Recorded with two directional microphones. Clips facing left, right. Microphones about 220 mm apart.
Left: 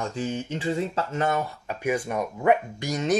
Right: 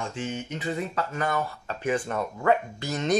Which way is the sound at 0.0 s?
35° left (ahead or behind).